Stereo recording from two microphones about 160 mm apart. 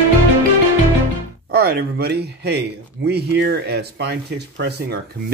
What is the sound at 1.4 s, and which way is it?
Speech, 75° right (ahead or behind).